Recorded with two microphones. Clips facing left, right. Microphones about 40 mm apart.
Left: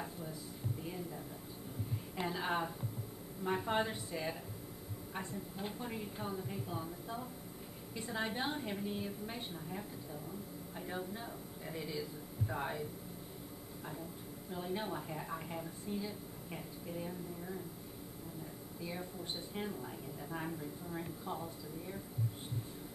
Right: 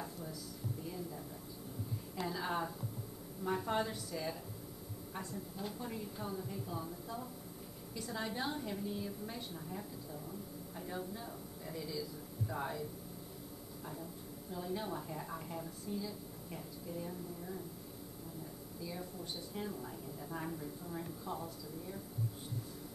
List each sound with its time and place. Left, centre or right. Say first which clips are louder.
2.1 s a sound: left 1 dB; left
3.4 s a woman's voice: left 1 dB; left
14.5 s a woman's voice: left 1 dB; left
18.8 s speech: left 1 dB; left
20.2 s a woman's voice: left 1 dB; centre